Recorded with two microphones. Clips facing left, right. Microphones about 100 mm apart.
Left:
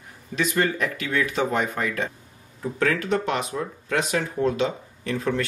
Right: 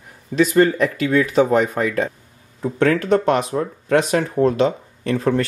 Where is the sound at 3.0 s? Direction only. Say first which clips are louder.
Right 8 dB; 40° right (ahead or behind).